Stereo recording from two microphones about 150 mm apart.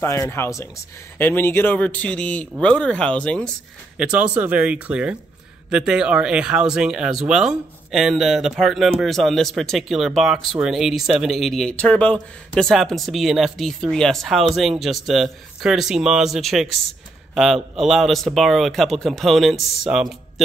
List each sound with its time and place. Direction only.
0.0 s a man's voice: 20° left (ahead or behind)
4.0 s speech: 10° right (ahead or behind)